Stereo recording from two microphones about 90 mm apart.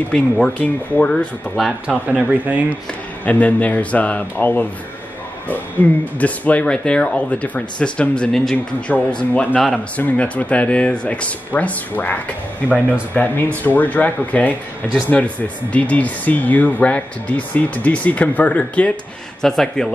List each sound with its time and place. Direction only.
0.1 s speech: 15° left (ahead or behind)
1.9 s speech: 15° right (ahead or behind)
3.3 s speech: 15° left (ahead or behind)